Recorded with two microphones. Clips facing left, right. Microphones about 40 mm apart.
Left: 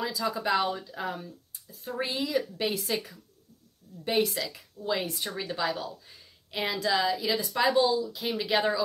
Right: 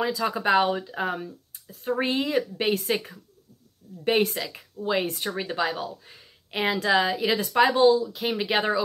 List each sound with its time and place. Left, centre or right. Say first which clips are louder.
0.0 s speech: right 5 dB; right
7.5 s speech: right 6 dB; right